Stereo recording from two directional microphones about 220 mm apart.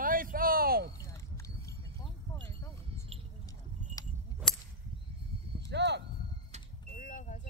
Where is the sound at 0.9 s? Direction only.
15° left (ahead or behind).